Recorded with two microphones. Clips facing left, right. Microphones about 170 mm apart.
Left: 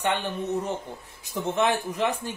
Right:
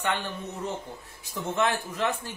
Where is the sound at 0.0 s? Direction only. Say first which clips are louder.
Left 3 dB; 20° left (ahead or behind).